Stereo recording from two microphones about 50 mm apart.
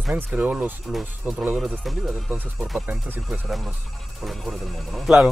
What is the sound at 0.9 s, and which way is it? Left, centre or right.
Speech, centre.